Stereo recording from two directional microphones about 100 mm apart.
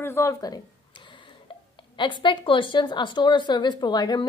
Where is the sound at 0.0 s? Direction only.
25° left (ahead or behind).